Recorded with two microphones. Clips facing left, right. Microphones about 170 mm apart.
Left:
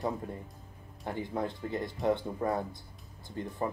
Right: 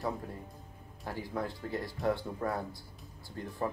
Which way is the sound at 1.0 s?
20° left (ahead or behind).